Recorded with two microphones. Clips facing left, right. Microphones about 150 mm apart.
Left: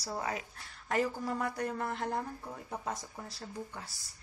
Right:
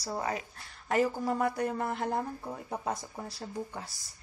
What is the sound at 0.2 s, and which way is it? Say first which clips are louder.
Speech: right 3 dB; centre (ahead or behind).